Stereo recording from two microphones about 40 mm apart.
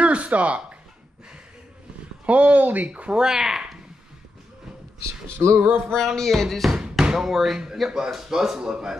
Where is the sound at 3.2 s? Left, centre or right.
Centre.